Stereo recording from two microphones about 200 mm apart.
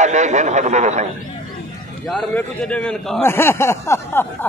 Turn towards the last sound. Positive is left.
turn(degrees=15)  # may be behind; listen again after turning